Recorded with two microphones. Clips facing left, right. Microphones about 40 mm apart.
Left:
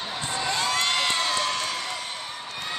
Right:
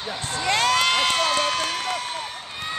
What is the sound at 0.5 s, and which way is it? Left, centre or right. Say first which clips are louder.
Crowd: right 7 dB; right.